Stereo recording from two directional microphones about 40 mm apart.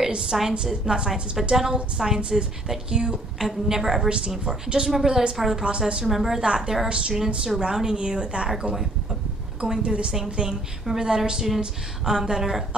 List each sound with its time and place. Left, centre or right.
0.4 s a woman's voice: centre
3.3 s a woman's voice: centre
4.5 s a woman's voice: right
4.9 s a woman's voice: centre
5.6 s a woman's voice: right
6.0 s a woman's voice: centre
6.4 s a woman's voice: right
9.6 s a woman's voice: right
10.9 s a woman's voice: centre